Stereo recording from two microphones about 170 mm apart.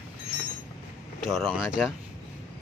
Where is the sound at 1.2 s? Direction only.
Centre (ahead or behind).